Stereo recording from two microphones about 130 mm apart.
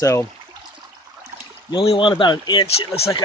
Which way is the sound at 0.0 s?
25° left (ahead or behind).